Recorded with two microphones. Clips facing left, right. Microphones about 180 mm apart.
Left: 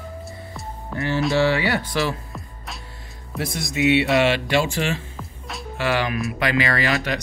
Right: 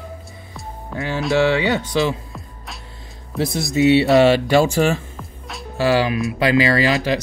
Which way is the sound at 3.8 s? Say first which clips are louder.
Right 5 dB; 35° right (ahead or behind).